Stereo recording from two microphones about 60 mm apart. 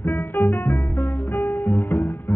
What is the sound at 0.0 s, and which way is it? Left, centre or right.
Music, left.